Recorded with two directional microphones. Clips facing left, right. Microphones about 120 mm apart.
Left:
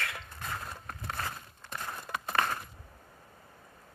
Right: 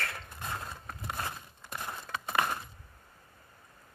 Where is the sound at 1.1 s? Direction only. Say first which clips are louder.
Even; 15° right (ahead or behind).